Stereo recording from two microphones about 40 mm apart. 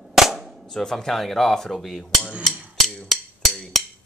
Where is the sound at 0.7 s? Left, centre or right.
Centre.